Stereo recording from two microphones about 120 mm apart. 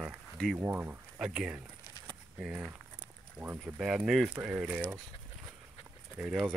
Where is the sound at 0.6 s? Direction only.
20° right (ahead or behind).